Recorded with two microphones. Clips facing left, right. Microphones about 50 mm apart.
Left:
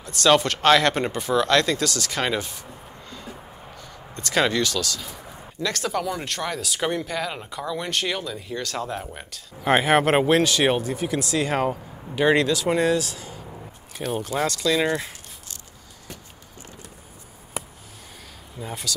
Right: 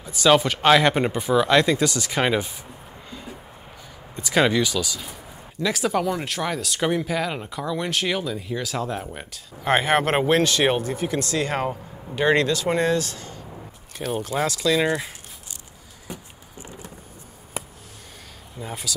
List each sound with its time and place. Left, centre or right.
0.0 s speech: centre
3.1 s music: centre
4.1 s speech: centre
16.1 s a sound: centre
17.6 s a sound: centre
18.6 s speech: centre